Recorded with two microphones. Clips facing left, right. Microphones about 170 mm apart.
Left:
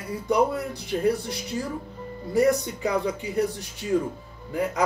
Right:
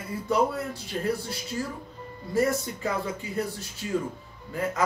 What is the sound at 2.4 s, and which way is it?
Speech, 15° left (ahead or behind).